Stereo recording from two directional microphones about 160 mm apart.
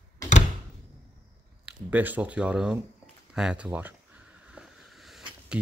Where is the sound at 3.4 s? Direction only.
5° right (ahead or behind).